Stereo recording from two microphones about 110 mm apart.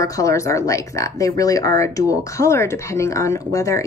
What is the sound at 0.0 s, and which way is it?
Speech, 30° left (ahead or behind).